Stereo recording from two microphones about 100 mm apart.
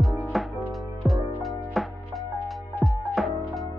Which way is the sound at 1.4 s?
Centre (ahead or behind).